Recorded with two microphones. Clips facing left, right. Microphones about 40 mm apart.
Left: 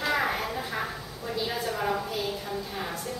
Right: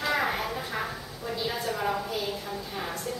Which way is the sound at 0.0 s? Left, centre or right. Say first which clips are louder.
Even; centre.